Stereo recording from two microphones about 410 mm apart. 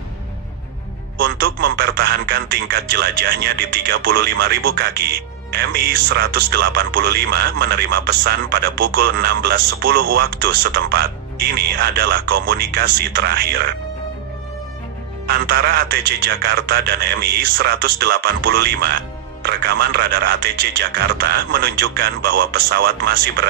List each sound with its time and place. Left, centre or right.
1.1 s a man's voice: right
15.2 s a man's voice: right